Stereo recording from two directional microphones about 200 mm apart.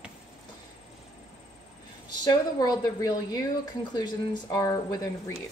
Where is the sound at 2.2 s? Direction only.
20° left (ahead or behind).